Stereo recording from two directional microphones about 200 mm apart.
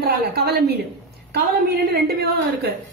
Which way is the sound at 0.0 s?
50° right (ahead or behind).